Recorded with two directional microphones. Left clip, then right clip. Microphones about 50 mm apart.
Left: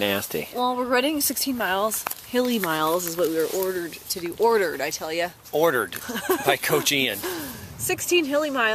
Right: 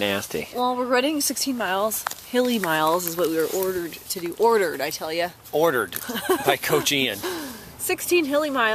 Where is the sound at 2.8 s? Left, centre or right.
Right.